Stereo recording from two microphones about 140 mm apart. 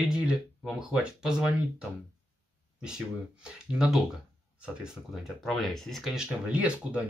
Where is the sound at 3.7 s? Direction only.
5° right (ahead or behind).